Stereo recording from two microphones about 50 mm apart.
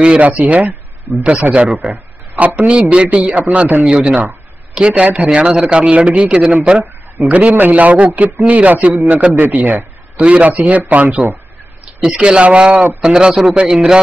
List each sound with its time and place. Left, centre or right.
0.0 s a man's voice: centre
3.8 s a man's voice: centre; by 10.2 s right
10.2 s a man's voice: right